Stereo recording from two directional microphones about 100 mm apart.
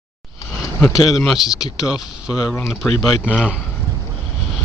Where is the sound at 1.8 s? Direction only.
40° left (ahead or behind).